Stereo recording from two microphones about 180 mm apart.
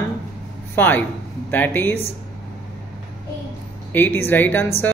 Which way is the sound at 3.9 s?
10° left (ahead or behind).